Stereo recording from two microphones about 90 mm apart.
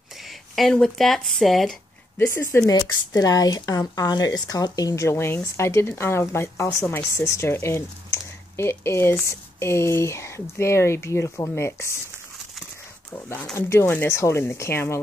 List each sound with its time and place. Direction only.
0.6 s speech: 5° left (ahead or behind)
2.1 s speech: 25° left (ahead or behind)
2.7 s speech: 45° left (ahead or behind); by 12.0 s 30° left (ahead or behind)
13.1 s speech: 20° left (ahead or behind)